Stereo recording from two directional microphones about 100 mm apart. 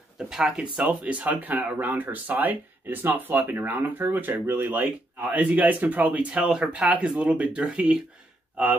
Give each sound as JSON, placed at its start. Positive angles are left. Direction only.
{"t": 0.3, "sound": "speech", "side_deg": -5}